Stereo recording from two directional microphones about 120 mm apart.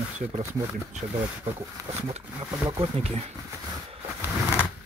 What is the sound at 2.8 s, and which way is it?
Speech, 60° right (ahead or behind).